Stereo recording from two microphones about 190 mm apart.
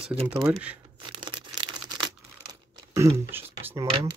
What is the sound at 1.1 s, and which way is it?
Tearing, 25° right (ahead or behind).